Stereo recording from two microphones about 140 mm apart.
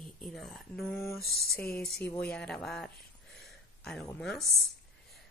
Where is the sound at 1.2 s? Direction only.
90° left.